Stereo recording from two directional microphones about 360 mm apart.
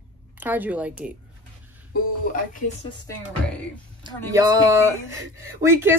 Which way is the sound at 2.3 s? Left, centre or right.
Left.